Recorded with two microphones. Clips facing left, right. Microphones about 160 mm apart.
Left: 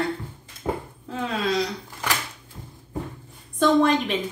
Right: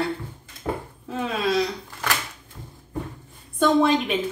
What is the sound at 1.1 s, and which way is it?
Speech, 10° right (ahead or behind).